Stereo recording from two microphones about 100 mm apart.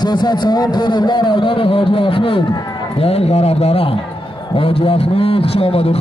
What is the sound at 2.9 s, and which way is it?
A man's voice, 90° left.